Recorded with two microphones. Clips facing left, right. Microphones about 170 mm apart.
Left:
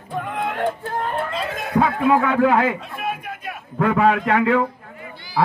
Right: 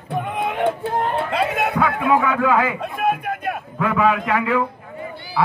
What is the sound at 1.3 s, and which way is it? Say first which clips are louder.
Speech: right 6 dB; 65° right (ahead or behind).